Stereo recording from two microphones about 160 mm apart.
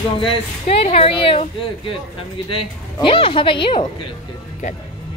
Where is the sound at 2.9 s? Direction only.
30° left (ahead or behind).